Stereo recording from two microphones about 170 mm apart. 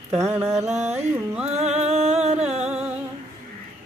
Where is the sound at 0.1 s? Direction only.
15° right (ahead or behind).